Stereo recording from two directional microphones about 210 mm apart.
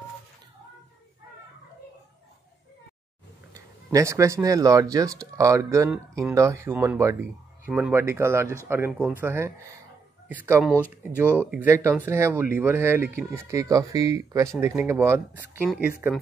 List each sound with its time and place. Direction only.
3.9 s speech: 15° right (ahead or behind)